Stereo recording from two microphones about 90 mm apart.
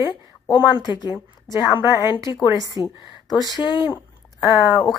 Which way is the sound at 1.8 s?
30° right (ahead or behind).